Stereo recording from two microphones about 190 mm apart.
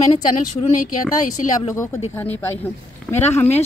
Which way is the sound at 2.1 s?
10° left (ahead or behind).